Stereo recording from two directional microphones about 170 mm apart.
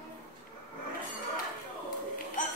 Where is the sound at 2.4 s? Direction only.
50° left (ahead or behind).